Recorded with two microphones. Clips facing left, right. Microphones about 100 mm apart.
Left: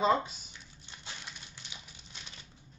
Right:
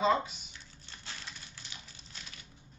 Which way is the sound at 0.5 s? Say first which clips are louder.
Even; 15° left (ahead or behind).